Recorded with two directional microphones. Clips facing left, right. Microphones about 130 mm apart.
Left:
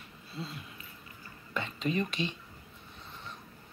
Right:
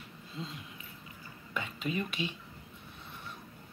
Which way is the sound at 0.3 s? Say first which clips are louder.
Left 1 dB; 15° right (ahead or behind).